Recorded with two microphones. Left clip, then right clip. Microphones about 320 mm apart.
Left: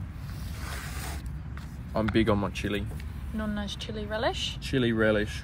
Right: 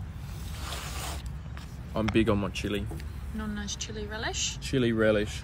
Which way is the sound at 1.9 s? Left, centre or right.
Centre.